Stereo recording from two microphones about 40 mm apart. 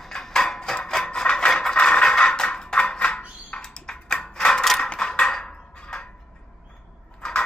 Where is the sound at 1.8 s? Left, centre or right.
Left.